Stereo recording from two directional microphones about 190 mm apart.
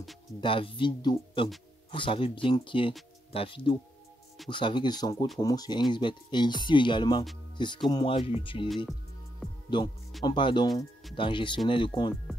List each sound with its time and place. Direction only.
0.4 s speech: 25° left (ahead or behind)
8.6 s speech: centre (ahead or behind)
9.7 s speech: 25° left (ahead or behind)